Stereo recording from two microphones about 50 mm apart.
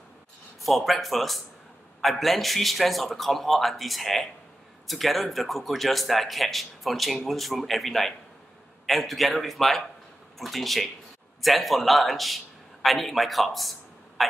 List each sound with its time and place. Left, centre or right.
0.6 s a man's voice: centre